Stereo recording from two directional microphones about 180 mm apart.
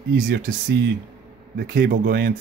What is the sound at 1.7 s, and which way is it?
Speech, 75° right (ahead or behind).